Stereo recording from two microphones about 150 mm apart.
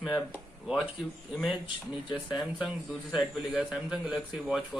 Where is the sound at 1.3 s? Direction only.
Centre (ahead or behind).